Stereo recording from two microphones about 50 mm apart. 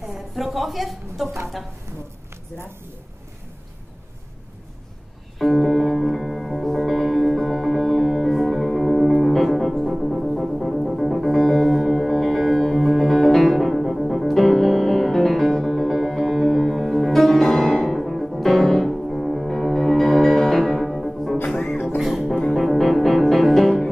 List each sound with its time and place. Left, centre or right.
0.0 s a woman's voice: centre
5.4 s music: centre
21.5 s music: centre
21.8 s music: centre